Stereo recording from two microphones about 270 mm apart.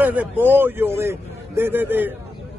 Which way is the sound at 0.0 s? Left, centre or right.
Centre.